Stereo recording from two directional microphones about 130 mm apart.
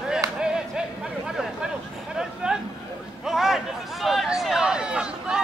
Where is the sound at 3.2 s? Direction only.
5° right (ahead or behind).